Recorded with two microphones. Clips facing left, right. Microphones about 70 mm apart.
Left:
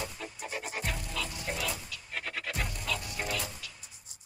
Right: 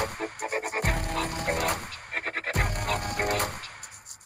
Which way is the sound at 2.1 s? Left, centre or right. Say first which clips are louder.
Right 6 dB; right.